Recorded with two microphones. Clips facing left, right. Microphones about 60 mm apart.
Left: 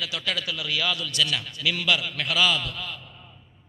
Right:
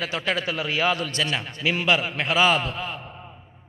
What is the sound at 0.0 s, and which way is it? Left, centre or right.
A man's voice, right.